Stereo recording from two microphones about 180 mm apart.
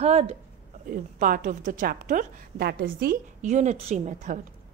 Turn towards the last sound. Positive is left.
turn(degrees=-40)  # may be behind; listen again after turning